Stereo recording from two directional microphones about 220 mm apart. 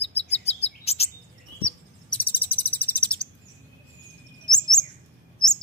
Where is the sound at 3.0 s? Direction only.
5° left (ahead or behind).